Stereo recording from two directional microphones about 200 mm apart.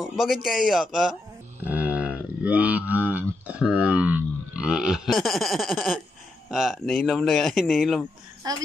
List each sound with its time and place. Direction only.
0.0 s speech: centre (ahead or behind)
8.4 s speech: 20° right (ahead or behind)